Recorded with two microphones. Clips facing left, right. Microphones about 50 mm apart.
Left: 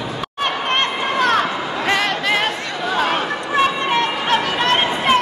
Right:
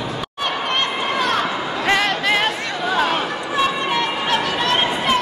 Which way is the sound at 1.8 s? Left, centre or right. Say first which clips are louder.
Right 1 dB; centre.